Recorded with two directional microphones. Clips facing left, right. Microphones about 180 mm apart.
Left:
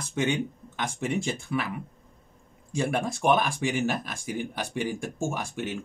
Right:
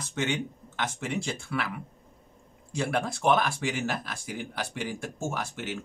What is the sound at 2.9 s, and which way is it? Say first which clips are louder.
Speech: even; 15° left (ahead or behind).